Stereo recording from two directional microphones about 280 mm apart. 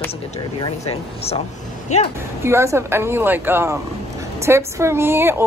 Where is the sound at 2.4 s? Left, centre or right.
Centre.